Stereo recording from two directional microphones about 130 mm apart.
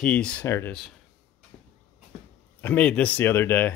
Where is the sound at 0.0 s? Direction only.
10° left (ahead or behind).